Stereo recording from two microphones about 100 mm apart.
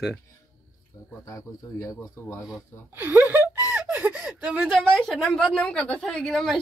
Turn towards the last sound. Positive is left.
turn(degrees=5)  # may be behind; listen again after turning